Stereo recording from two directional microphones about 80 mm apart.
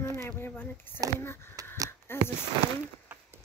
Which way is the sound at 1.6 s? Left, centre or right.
Right.